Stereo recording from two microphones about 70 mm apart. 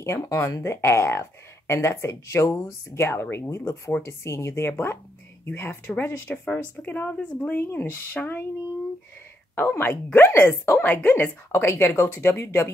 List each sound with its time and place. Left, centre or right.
0.0 s speech: left
9.6 s speech: left